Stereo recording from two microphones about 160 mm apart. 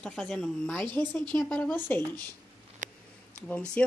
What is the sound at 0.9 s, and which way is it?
Speech, 30° right (ahead or behind).